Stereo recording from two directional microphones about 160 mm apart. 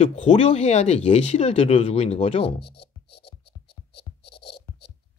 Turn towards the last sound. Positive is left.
turn(degrees=90)